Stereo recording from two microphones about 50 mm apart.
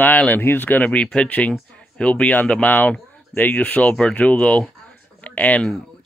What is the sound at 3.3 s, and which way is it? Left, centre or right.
Speech, left.